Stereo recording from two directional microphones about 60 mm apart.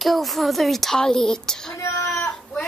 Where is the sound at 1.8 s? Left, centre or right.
Left.